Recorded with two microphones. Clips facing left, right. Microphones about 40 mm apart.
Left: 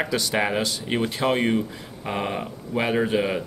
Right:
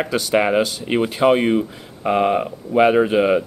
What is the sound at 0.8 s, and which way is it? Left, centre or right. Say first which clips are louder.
Speech: right 7 dB; right.